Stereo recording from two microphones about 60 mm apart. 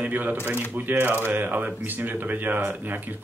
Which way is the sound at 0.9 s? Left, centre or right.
Right.